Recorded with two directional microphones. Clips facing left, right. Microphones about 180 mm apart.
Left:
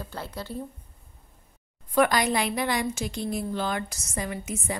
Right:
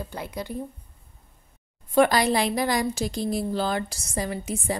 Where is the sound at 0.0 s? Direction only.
15° right (ahead or behind).